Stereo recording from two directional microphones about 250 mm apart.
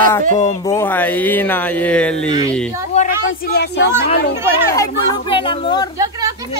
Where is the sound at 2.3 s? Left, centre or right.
Centre.